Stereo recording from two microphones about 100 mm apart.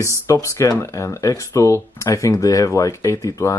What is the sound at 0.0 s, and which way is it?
Speech, 30° left (ahead or behind).